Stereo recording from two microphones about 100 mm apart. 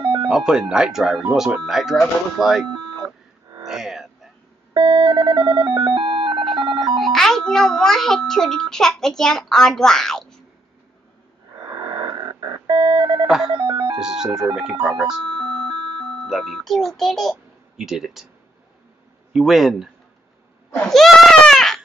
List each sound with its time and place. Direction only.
0.0 s a sound: 60° right (ahead or behind)
0.3 s speech: 5° right (ahead or behind)
3.6 s a sound: 5° right (ahead or behind)
4.7 s telephone: 50° right (ahead or behind)
7.0 s a child's voice: 5° left (ahead or behind)
11.7 s a sound: 50° right (ahead or behind)
12.7 s telephone dialing: 55° right (ahead or behind)
13.9 s speech: 5° right (ahead or behind)
15.3 s ice cream truck: 50° right (ahead or behind)
16.3 s a child's voice: centre (ahead or behind)
19.3 s speech: 5° right (ahead or behind)